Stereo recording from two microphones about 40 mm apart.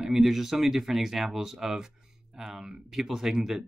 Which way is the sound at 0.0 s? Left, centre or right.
Centre.